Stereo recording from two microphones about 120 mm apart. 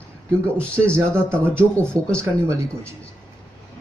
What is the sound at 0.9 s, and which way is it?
Speech, 20° right (ahead or behind).